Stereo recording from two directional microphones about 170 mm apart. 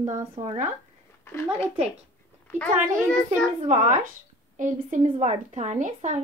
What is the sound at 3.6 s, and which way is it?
A woman's voice, 45° right (ahead or behind).